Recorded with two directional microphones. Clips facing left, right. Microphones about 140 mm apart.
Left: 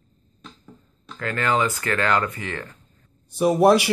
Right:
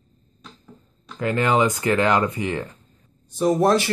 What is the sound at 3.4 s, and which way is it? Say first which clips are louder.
Speech: left 2 dB; 10° left (ahead or behind).